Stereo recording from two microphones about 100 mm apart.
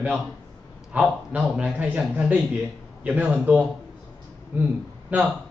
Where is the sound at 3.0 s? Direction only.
15° right (ahead or behind).